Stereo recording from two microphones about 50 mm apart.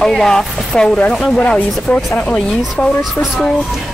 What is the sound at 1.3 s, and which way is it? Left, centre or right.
Speech, left.